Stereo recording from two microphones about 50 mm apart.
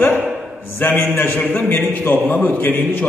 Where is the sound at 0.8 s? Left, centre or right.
Left.